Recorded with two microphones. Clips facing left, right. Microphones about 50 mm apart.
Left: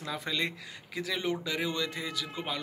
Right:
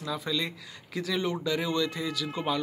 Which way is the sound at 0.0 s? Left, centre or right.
Left.